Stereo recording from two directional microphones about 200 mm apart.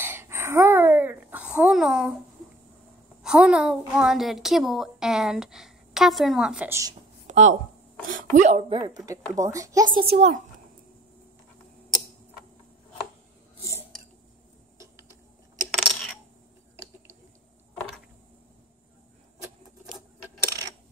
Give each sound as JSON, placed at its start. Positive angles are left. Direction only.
{"t": 0.0, "sound": "a sound", "side_deg": -10}
{"t": 3.2, "sound": "a woman's voice", "side_deg": -5}
{"t": 7.2, "sound": "a sound", "side_deg": -35}
{"t": 8.1, "sound": "speech", "side_deg": -40}
{"t": 10.1, "sound": "a child's voice", "side_deg": -30}
{"t": 15.7, "sound": "coin", "side_deg": 0}